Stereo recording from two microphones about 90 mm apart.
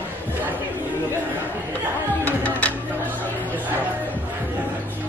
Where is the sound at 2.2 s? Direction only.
15° left (ahead or behind).